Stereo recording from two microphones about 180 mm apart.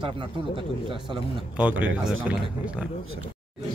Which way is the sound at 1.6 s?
5° right (ahead or behind).